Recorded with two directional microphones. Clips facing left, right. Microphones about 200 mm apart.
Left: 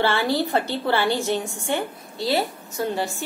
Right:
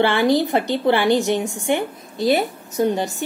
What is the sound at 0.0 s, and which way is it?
A woman's voice, 15° right (ahead or behind).